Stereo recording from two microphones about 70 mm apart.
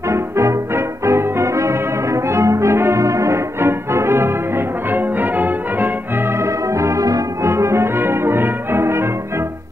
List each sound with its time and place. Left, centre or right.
0.1 s music: right
2.2 s brass instrument: right
6.4 s music: right
7.5 s brass instrument: right